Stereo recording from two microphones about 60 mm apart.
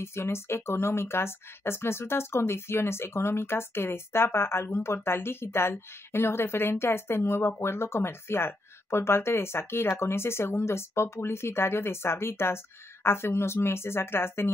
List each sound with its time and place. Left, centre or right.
0.0 s speech: left